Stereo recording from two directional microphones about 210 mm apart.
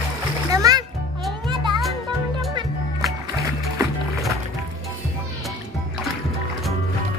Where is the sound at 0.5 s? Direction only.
15° right (ahead or behind).